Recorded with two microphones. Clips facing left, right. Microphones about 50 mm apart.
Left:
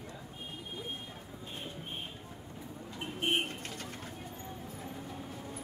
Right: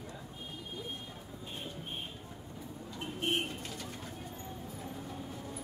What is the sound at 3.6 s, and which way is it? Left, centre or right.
Bird, left.